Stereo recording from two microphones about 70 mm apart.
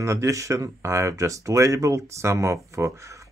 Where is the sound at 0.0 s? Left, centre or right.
Right.